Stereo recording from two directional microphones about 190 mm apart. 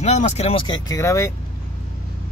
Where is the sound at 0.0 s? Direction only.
35° left (ahead or behind); by 1.3 s 15° left (ahead or behind).